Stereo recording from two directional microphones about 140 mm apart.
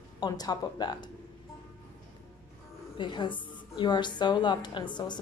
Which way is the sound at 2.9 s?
35° left (ahead or behind).